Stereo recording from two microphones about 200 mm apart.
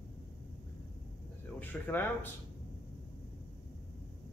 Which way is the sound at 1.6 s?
10° left (ahead or behind).